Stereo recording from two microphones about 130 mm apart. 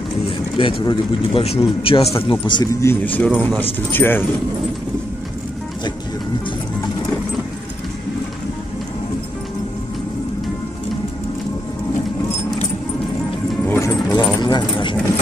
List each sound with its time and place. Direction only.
0.6 s speech: 45° left (ahead or behind)
2.7 s a man's voice: 25° left (ahead or behind)
3.1 s speech: 10° left (ahead or behind)
13.7 s keys jangling: 25° left (ahead or behind)
14.4 s keys jangling: 40° left (ahead or behind)